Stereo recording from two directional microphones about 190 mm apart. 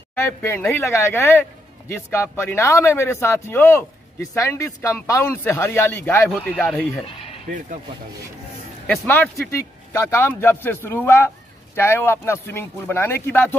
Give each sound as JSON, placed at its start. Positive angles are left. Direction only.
{"t": 0.1, "sound": "speech", "side_deg": 10}
{"t": 7.1, "sound": "a sound", "side_deg": 30}
{"t": 8.8, "sound": "speech", "side_deg": 10}